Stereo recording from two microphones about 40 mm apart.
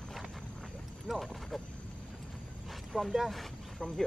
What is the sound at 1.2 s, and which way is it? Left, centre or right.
Speech, centre.